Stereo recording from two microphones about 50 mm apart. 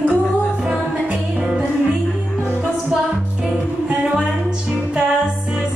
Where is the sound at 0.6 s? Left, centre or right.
Right.